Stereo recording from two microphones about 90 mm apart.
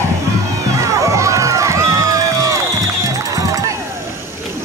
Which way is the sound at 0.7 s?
35° right (ahead or behind).